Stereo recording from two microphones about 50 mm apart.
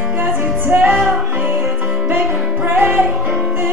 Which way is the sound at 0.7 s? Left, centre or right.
Right.